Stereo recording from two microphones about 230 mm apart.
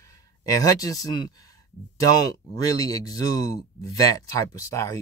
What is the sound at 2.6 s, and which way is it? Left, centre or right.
Speech, centre.